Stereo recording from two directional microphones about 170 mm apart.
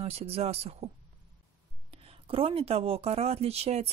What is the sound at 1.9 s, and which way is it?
Speech, 35° right (ahead or behind).